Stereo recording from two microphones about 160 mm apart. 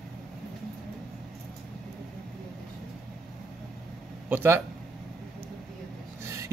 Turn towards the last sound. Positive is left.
turn(degrees=-20)  # may be behind; listen again after turning